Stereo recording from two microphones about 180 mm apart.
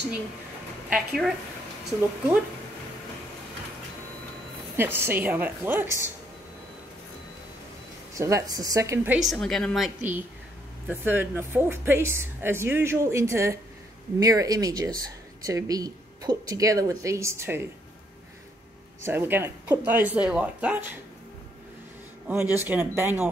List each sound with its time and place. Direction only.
0.9 s a woman's voice: centre (ahead or behind)
4.7 s speech: 10° right (ahead or behind)
8.1 s speech: 15° right (ahead or behind)
19.0 s speech: 10° right (ahead or behind)
22.3 s speech: 10° right (ahead or behind)